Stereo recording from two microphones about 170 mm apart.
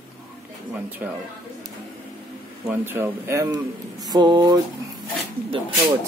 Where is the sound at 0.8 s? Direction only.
10° right (ahead or behind).